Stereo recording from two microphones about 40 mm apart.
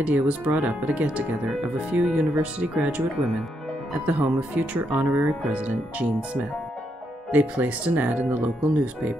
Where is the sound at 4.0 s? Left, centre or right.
Right.